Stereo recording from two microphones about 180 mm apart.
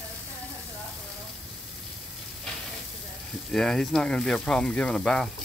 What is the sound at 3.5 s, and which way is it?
Speech, 5° left (ahead or behind).